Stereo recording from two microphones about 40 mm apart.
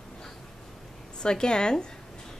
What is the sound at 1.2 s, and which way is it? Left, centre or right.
Speech, centre.